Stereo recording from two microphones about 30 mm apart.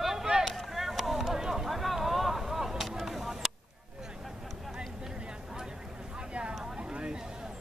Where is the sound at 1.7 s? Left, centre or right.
Centre.